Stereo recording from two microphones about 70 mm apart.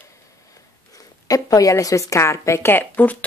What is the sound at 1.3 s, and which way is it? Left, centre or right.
A woman's voice, left.